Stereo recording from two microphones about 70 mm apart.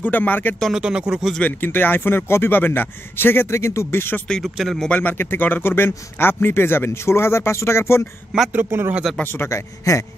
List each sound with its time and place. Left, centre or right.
0.0 s speech: left
0.7 s speech: centre
1.4 s speech: left
4.6 s speech: centre
4.8 s speech: left
5.1 s speech: left
8.5 s a man's voice: right
9.2 s speech: left
9.5 s a man's voice: left